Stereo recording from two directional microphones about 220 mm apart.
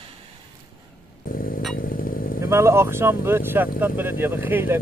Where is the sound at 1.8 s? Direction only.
40° left (ahead or behind).